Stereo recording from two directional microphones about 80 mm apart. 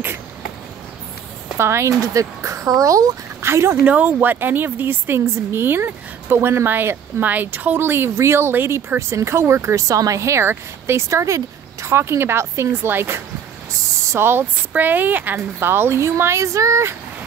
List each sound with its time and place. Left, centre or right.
1.6 s speech: right
3.4 s a woman's voice: right
3.8 s a woman's voice: centre; by 16.9 s right